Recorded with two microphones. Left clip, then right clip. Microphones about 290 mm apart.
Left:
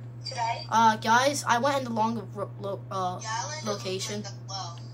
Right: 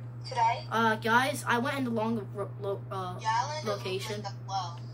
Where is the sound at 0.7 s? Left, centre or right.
Centre.